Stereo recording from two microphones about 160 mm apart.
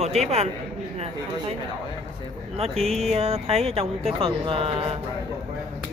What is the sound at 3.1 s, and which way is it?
Speech, 40° right (ahead or behind).